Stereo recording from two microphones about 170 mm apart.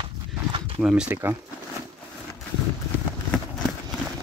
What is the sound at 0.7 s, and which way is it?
Speech, 5° right (ahead or behind).